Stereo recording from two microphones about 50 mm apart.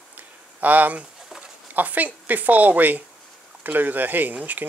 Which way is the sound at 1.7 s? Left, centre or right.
Right.